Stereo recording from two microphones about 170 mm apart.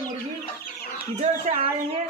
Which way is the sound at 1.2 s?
40° right (ahead or behind).